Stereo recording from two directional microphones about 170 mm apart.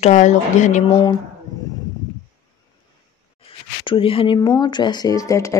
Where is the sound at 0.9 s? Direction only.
25° left (ahead or behind).